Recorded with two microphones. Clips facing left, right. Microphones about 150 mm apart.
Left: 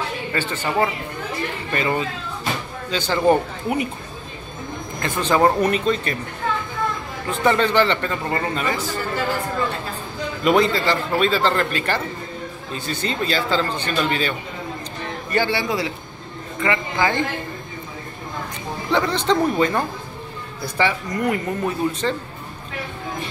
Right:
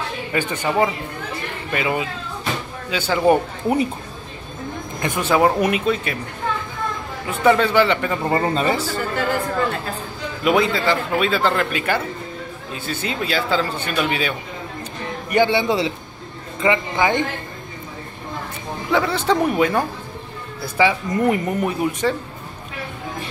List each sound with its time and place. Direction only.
0.3 s speech: 15° right (ahead or behind)
5.0 s speech: 10° right (ahead or behind)
7.2 s speech: 5° right (ahead or behind)
8.3 s speech: 30° right (ahead or behind)
10.4 s speech: 5° right (ahead or behind)
15.3 s speech: 20° right (ahead or behind)
18.9 s speech: 5° right (ahead or behind)
21.1 s speech: 25° right (ahead or behind)